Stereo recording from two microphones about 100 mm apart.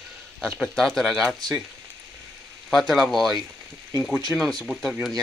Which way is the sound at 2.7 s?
Centre (ahead or behind).